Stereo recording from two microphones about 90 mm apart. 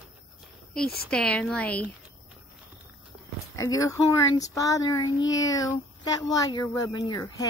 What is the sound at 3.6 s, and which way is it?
A child's voice, 40° left (ahead or behind).